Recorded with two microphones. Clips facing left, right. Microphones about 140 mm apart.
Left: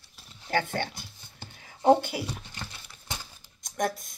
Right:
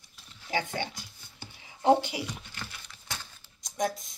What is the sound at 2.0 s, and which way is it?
Speech, 50° left (ahead or behind).